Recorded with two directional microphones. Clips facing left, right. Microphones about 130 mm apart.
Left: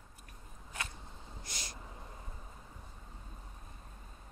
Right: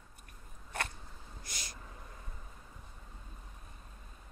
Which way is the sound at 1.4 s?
30° left (ahead or behind).